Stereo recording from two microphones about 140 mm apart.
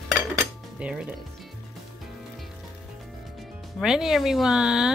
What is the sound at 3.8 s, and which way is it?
Speech, 5° right (ahead or behind).